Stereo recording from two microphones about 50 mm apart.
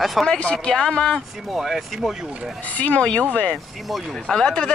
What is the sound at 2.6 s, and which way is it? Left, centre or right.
Speech, left.